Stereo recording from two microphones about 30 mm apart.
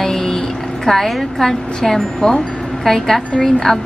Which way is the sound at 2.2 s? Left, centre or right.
Left.